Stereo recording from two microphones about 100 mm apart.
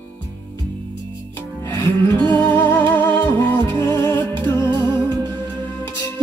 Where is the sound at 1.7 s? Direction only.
30° left (ahead or behind).